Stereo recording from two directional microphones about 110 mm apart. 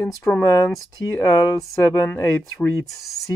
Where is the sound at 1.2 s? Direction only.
30° left (ahead or behind).